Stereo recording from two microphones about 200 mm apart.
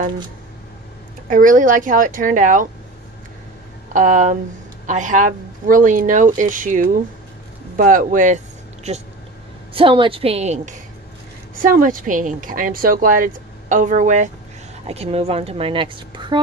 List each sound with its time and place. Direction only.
1.3 s a woman's voice: 40° right (ahead or behind)
3.9 s a woman's voice: 40° right (ahead or behind)
9.8 s a woman's voice: 25° right (ahead or behind)